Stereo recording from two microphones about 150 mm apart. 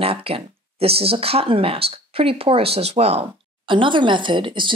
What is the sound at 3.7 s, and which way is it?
Speech, 35° right (ahead or behind).